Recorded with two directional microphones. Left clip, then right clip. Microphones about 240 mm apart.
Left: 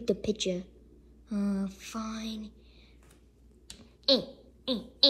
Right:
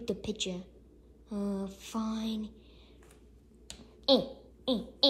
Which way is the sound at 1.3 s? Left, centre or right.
Centre.